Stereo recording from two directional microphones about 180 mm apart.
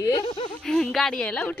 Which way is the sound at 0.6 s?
5° left (ahead or behind).